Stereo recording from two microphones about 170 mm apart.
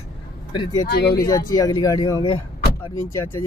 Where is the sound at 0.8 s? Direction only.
70° left (ahead or behind).